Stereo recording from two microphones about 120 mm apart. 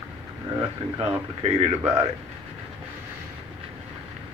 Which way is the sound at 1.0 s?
55° right (ahead or behind).